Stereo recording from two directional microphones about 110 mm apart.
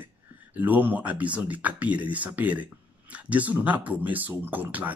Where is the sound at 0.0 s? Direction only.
15° right (ahead or behind).